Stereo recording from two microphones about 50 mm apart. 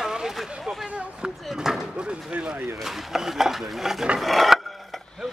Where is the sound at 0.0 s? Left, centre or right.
Centre.